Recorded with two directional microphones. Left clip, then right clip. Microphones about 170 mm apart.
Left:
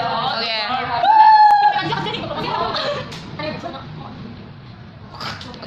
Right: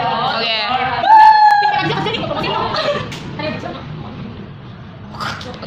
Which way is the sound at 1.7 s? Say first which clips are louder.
Right 3 dB; 20° right (ahead or behind).